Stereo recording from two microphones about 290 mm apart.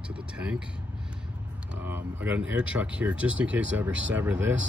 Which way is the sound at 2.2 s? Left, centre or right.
Centre.